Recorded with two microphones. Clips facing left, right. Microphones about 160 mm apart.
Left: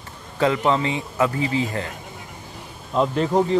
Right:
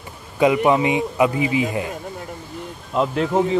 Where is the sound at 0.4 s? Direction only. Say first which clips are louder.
Right 4 dB; 15° right (ahead or behind).